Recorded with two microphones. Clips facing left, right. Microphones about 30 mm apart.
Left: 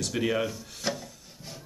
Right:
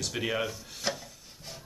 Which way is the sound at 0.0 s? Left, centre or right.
Centre.